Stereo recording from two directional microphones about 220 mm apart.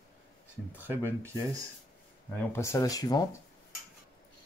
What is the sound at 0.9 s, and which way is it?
Speech, 10° right (ahead or behind).